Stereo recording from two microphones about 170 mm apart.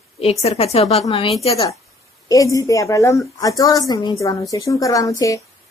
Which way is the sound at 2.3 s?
20° left (ahead or behind).